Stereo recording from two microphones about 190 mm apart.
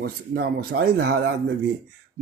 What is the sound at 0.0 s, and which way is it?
Speech, 55° right (ahead or behind).